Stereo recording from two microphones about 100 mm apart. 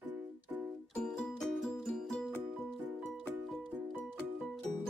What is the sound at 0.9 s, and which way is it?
Music, 5° left (ahead or behind).